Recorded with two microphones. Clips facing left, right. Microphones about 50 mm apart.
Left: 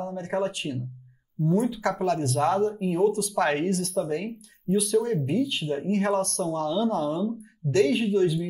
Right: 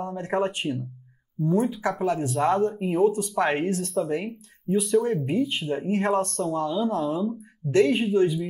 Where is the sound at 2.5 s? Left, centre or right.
Right.